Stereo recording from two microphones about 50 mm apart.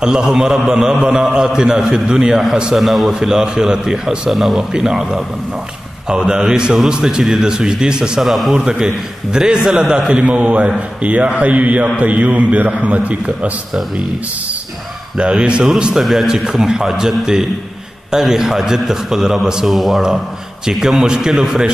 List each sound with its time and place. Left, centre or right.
0.0 s a man's voice: centre
4.3 s a man's voice: centre
8.2 s a man's voice: centre
10.1 s a man's voice: right
15.1 s a man's voice: centre